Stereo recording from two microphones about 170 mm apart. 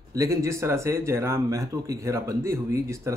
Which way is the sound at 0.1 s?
20° right (ahead or behind).